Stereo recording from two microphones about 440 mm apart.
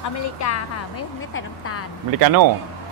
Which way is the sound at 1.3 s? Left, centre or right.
Left.